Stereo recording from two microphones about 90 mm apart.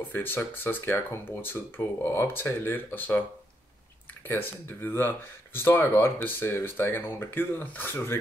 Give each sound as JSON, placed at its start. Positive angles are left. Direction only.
{"t": 0.1, "sound": "speech", "side_deg": 25}
{"t": 4.8, "sound": "speech", "side_deg": 25}